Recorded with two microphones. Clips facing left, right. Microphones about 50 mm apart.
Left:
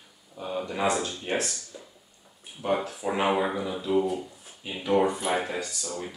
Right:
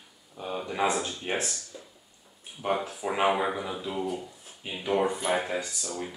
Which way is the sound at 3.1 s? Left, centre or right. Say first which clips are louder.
Even; centre.